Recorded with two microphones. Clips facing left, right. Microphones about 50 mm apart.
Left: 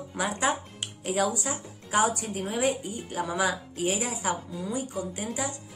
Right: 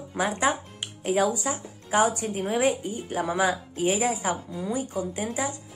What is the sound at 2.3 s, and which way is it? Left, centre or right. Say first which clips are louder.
A woman's voice: right 3 dB; right.